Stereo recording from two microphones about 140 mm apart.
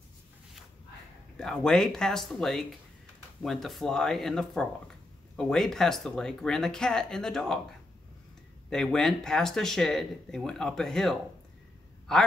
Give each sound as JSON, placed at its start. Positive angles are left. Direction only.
{"t": 1.4, "sound": "speech", "side_deg": 5}
{"t": 8.6, "sound": "speech", "side_deg": 5}